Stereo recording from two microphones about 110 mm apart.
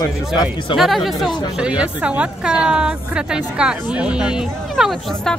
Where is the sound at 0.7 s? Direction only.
50° left (ahead or behind).